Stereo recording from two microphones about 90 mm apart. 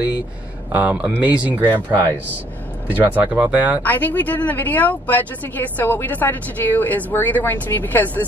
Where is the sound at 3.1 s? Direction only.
15° right (ahead or behind).